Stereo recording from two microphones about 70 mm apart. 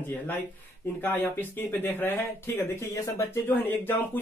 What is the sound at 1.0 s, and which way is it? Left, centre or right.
Speech, left.